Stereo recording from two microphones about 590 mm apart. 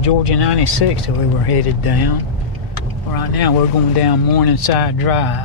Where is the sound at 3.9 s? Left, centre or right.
Left.